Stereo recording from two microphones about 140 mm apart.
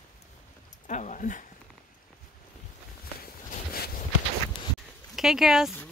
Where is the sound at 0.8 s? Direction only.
60° left (ahead or behind).